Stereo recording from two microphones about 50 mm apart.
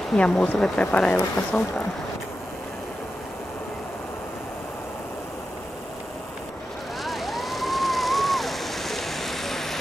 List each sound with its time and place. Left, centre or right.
0.1 s speech: centre
1.5 s speech: left
7.1 s a sound: centre